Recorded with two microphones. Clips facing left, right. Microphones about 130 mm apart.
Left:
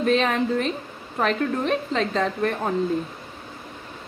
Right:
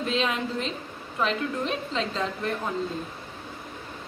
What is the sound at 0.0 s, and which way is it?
A woman's voice, 55° left (ahead or behind).